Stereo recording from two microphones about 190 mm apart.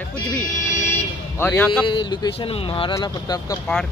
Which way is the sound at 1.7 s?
25° left (ahead or behind).